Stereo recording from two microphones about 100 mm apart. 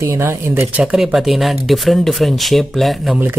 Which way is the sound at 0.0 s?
25° right (ahead or behind).